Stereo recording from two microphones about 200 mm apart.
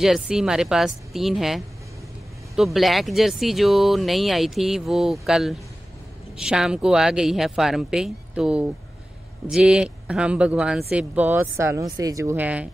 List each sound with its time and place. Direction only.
0.0 s speech: 5° right (ahead or behind)